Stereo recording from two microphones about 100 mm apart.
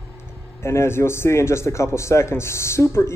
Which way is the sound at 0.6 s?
25° left (ahead or behind).